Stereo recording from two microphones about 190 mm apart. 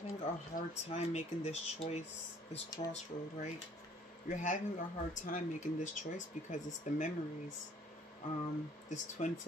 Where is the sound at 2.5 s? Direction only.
20° left (ahead or behind).